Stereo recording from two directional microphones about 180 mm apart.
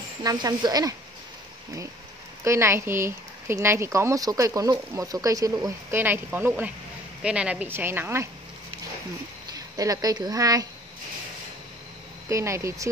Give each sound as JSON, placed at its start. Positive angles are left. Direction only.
{"t": 0.2, "sound": "speech", "side_deg": -20}
{"t": 2.4, "sound": "speech", "side_deg": -15}
{"t": 9.5, "sound": "speech", "side_deg": -20}
{"t": 12.3, "sound": "speech", "side_deg": -15}